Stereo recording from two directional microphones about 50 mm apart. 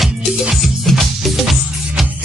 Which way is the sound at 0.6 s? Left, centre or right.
Centre.